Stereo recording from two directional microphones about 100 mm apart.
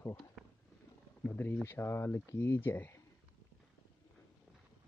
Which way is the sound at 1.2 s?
20° left (ahead or behind).